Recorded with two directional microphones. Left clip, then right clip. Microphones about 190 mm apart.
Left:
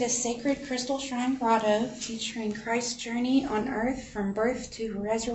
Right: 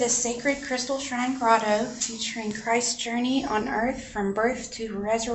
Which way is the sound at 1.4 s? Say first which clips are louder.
Right 3 dB; 20° left (ahead or behind).